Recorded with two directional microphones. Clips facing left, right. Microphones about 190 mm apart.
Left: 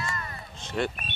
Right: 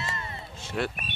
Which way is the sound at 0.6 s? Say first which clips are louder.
Left 1 dB; 5° right (ahead or behind).